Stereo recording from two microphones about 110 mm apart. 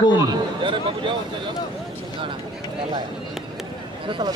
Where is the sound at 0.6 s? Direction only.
50° right (ahead or behind).